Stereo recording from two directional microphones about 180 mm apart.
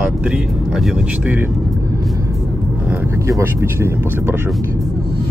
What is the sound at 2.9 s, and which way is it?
Speech, 10° right (ahead or behind).